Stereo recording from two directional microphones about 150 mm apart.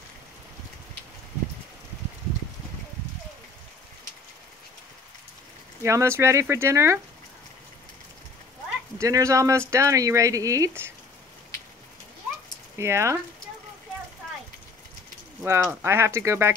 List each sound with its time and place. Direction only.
5.8 s speech: 20° right (ahead or behind)
9.0 s speech: 20° right (ahead or behind)
12.7 s speech: 20° right (ahead or behind)
15.4 s speech: 15° right (ahead or behind)